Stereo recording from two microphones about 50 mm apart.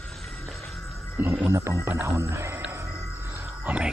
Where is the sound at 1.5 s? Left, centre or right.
Right.